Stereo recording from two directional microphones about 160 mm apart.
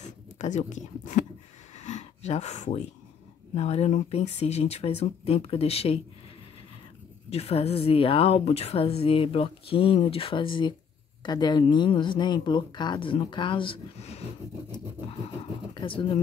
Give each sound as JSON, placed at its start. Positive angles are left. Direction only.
{"t": 0.0, "sound": "a sound", "side_deg": 45}
{"t": 3.5, "sound": "speech", "side_deg": 40}
{"t": 7.2, "sound": "speech", "side_deg": 40}